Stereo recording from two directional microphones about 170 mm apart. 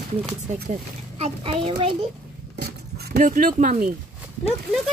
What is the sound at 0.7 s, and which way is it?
Speech, 35° right (ahead or behind).